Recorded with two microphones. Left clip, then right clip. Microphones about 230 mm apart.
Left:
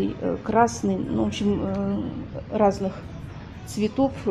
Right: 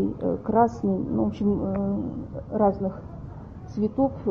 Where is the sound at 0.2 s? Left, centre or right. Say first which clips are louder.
Left 1 dB; centre.